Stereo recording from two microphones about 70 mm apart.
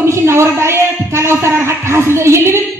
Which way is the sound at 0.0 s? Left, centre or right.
Right.